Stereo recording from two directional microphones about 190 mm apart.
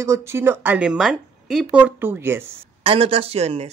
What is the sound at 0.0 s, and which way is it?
A woman's voice, 15° right (ahead or behind).